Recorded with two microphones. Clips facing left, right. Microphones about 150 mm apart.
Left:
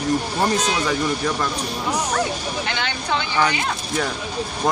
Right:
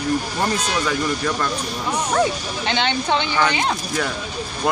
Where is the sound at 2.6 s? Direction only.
25° right (ahead or behind).